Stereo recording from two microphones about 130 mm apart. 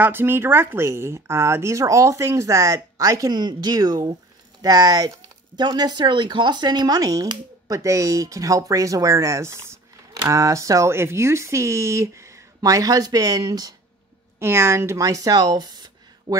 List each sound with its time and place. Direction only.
0.0 s a woman's voice: 15° right (ahead or behind)